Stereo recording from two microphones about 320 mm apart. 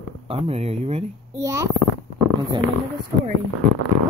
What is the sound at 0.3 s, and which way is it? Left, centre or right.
Speech, centre.